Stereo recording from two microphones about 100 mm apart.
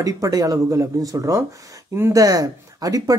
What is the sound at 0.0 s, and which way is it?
Speech, 35° right (ahead or behind).